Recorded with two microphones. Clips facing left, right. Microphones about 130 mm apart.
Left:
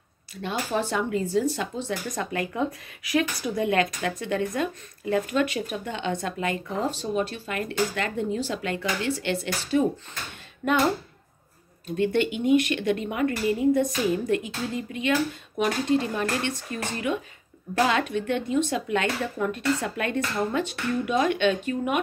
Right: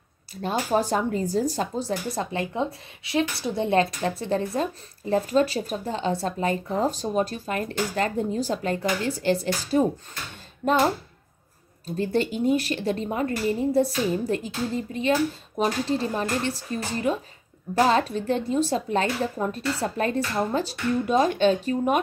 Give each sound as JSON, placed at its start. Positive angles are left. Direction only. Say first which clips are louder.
{"t": 0.3, "sound": "speech", "louder": "right 4 dB", "side_deg": -40}